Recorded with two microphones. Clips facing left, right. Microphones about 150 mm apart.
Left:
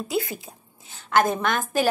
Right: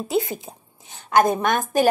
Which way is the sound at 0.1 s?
20° right (ahead or behind).